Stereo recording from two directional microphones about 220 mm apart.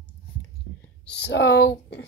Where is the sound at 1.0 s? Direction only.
50° left (ahead or behind).